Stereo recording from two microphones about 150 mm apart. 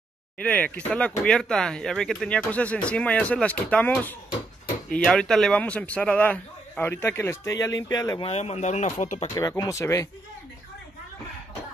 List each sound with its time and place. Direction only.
0.4 s speech: 10° left (ahead or behind); by 8.2 s 25° left (ahead or behind)
8.2 s speech: 45° left (ahead or behind)
9.3 s speech: 20° left (ahead or behind)